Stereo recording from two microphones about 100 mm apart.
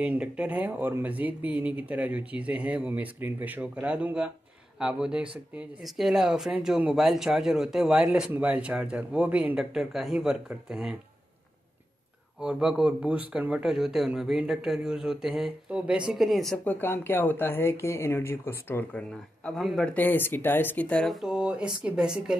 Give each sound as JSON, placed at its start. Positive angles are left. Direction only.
{"t": 0.0, "sound": "a man's voice", "side_deg": -15}
{"t": 12.4, "sound": "a man's voice", "side_deg": -5}
{"t": 16.6, "sound": "speech", "side_deg": 20}
{"t": 18.9, "sound": "a man's voice", "side_deg": 10}
{"t": 19.9, "sound": "speech", "side_deg": 20}
{"t": 21.1, "sound": "speech", "side_deg": -5}